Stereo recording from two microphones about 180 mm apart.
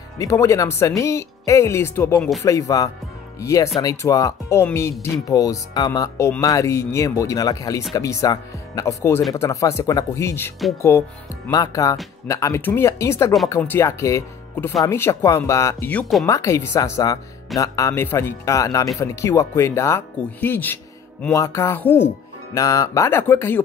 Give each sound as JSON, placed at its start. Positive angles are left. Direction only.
{"t": 0.2, "sound": "speech", "side_deg": 15}
{"t": 2.1, "sound": "speech", "side_deg": 0}
{"t": 2.4, "sound": "speech", "side_deg": 20}
{"t": 16.3, "sound": "speech", "side_deg": 15}